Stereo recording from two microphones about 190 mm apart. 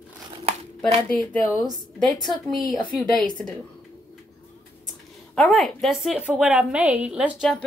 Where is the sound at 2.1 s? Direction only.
20° left (ahead or behind).